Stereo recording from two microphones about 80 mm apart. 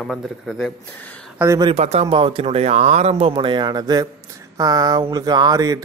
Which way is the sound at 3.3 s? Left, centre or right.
Right.